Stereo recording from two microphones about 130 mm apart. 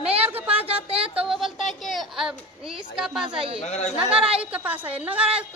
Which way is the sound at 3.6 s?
60° left (ahead or behind).